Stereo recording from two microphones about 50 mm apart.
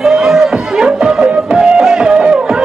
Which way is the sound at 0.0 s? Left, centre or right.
Centre.